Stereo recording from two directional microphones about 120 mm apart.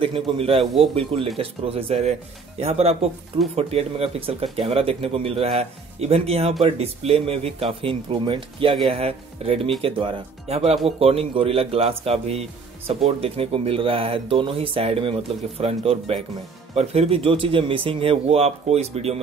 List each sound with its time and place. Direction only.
0.0 s speech: 50° right (ahead or behind)
8.8 s speech: 55° right (ahead or behind)